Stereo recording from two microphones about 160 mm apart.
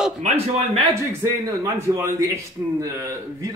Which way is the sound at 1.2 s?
20° right (ahead or behind).